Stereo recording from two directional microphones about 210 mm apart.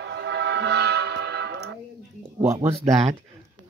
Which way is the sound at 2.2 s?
20° right (ahead or behind).